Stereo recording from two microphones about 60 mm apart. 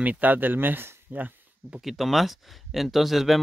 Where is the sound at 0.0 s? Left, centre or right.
Right.